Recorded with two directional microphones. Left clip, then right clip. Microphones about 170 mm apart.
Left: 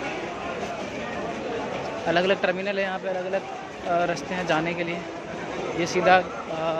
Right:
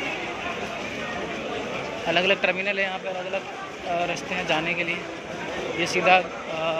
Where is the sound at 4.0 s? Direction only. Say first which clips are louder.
Left 1 dB; 35° left (ahead or behind).